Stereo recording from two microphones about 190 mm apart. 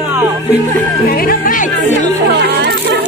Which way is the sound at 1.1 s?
45° left (ahead or behind).